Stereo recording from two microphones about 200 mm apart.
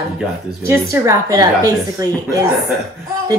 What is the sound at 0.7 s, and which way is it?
A child's voice, 15° right (ahead or behind).